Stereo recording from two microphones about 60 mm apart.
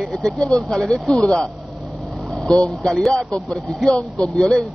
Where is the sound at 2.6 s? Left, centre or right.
Centre.